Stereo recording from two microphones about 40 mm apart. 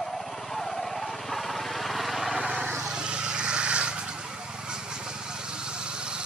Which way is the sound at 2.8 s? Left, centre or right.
Right.